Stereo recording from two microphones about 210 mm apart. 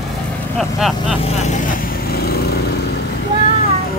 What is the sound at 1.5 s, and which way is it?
Vehicle, 40° left (ahead or behind).